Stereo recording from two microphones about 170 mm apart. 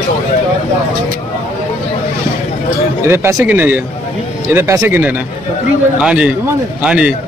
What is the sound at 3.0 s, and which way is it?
Speech, 15° right (ahead or behind).